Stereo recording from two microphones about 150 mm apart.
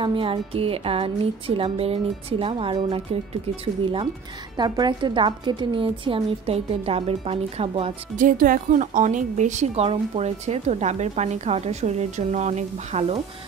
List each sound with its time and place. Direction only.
0.0 s a woman's voice: 35° right (ahead or behind)
8.2 s a woman's voice: 65° right (ahead or behind); by 13.2 s 45° right (ahead or behind)